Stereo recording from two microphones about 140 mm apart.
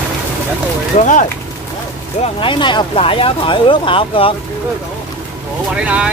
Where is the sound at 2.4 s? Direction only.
35° left (ahead or behind).